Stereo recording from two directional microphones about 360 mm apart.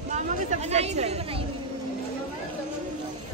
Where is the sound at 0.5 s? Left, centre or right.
Centre.